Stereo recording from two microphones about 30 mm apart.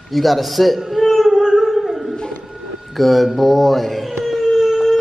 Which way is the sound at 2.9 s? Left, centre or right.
Centre.